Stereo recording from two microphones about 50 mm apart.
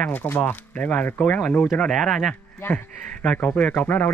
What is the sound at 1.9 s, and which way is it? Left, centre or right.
Speech, centre.